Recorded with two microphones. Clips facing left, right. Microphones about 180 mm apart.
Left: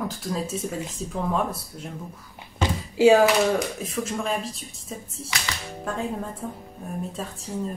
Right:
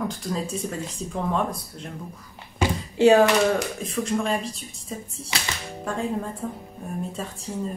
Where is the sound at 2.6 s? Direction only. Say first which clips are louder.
Right 2 dB; 10° right (ahead or behind).